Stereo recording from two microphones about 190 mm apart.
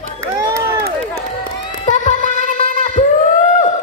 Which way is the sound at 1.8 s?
40° left (ahead or behind).